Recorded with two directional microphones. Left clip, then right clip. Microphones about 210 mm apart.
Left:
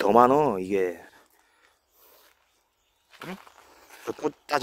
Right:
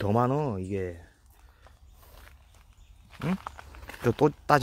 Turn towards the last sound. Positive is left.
turn(degrees=10)  # may be behind; listen again after turning